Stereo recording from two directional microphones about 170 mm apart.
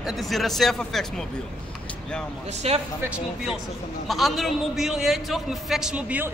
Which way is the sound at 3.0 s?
5° right (ahead or behind).